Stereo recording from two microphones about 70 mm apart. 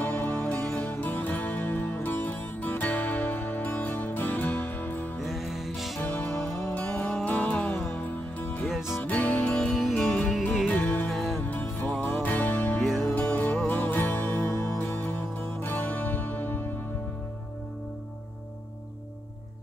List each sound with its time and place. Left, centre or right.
0.0 s music: left
5.2 s music: centre
6.9 s music: centre
8.0 s music: left
8.6 s music: centre
9.0 s music: centre
10.7 s music: left
11.1 s music: centre
11.4 s music: left
12.8 s music: centre
13.1 s music: left